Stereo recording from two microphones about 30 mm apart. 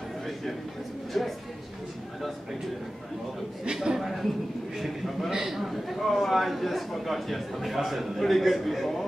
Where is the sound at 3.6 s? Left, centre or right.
Right.